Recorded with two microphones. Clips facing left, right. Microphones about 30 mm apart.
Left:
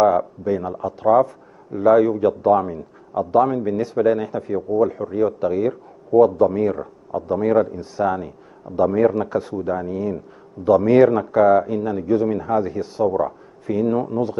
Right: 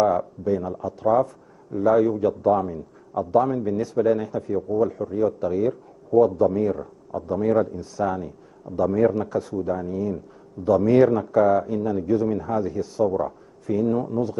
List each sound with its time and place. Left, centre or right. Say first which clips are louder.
0.0 s a man's voice: left 4 dB; left